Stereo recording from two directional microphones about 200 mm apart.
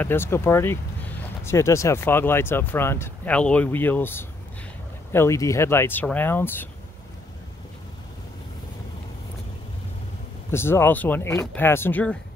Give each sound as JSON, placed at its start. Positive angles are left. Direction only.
{"t": 0.0, "sound": "speech", "side_deg": 10}
{"t": 10.5, "sound": "speech", "side_deg": 10}